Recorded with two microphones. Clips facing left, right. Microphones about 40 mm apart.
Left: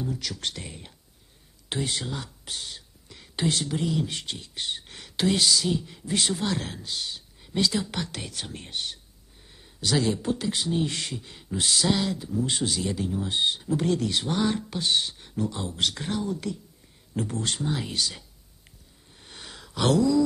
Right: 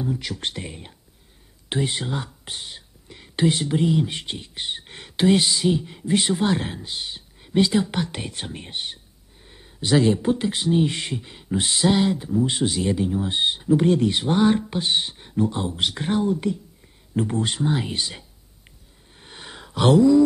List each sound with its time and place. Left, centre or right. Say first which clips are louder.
0.0 s speech: right 4 dB; right
12.4 s speech: right 5 dB; centre
19.1 s a sound: right 4 dB; right